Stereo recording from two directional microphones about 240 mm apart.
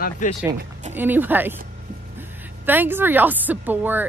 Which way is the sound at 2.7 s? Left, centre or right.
Centre.